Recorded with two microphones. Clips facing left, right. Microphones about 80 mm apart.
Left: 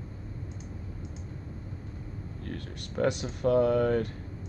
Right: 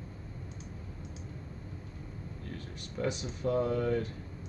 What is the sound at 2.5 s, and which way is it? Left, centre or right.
Speech, left.